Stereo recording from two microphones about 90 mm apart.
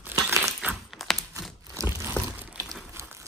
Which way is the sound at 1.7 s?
30° right (ahead or behind).